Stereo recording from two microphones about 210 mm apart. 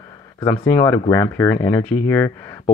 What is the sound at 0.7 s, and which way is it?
Speech, 20° left (ahead or behind).